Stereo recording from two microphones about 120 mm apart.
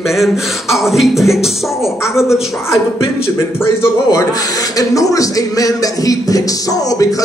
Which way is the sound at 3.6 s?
25° left (ahead or behind).